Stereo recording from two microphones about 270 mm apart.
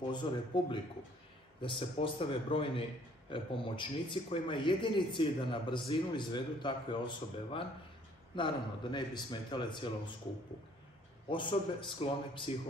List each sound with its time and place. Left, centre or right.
0.0 s a man's voice: centre
11.2 s speech: centre